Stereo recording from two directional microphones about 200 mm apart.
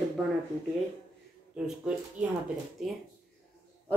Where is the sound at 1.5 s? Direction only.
5° right (ahead or behind).